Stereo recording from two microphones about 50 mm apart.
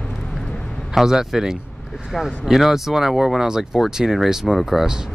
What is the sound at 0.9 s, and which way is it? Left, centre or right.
Speech, centre.